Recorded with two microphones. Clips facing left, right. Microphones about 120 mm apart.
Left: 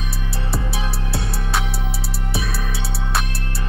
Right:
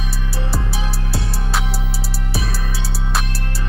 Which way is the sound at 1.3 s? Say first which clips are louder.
Even; centre (ahead or behind).